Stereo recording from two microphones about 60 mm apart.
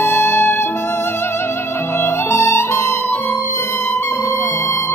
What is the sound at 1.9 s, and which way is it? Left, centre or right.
Music, left.